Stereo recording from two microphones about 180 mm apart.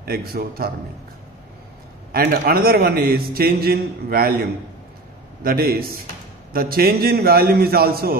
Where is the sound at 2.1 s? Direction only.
60° right (ahead or behind).